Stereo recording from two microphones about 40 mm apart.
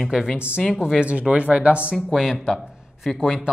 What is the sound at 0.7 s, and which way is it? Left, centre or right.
Speech, centre.